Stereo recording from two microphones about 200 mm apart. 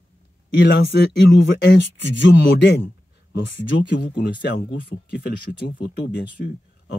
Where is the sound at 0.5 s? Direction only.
60° left (ahead or behind).